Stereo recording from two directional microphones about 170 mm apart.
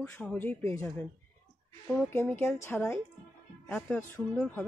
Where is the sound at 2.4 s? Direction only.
15° left (ahead or behind).